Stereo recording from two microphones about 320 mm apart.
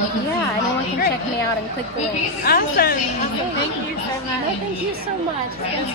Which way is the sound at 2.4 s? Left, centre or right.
Left.